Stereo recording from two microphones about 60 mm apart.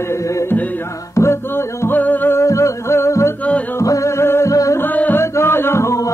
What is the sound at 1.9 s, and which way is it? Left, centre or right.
Music, left.